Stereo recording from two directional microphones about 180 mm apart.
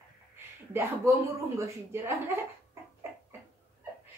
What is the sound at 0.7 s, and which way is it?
Speech, 15° right (ahead or behind).